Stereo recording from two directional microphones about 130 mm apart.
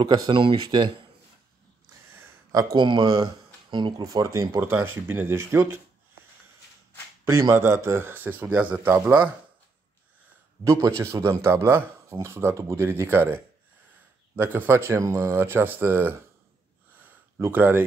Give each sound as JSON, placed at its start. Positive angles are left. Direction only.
{"t": 0.0, "sound": "speech", "side_deg": -35}
{"t": 2.5, "sound": "speech", "side_deg": -35}
{"t": 7.2, "sound": "a man's voice", "side_deg": -20}
{"t": 10.6, "sound": "a man's voice", "side_deg": -25}
{"t": 17.0, "sound": "a sound", "side_deg": -15}